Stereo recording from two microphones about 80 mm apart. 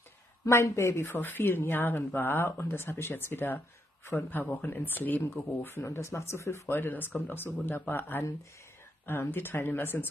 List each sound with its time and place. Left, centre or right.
0.5 s a woman's voice: left